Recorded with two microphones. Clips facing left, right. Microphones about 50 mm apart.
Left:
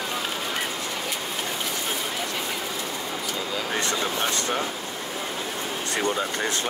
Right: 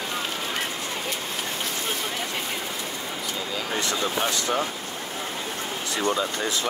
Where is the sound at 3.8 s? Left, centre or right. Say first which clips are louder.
Right 2 dB; left.